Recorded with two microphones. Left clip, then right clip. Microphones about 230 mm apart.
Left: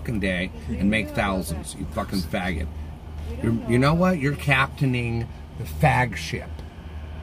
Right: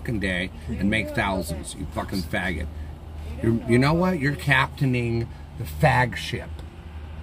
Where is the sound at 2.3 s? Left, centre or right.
Right.